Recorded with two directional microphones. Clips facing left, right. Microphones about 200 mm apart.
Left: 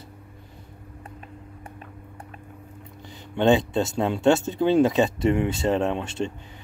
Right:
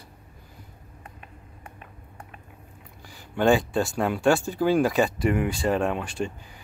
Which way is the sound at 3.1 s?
20° left (ahead or behind).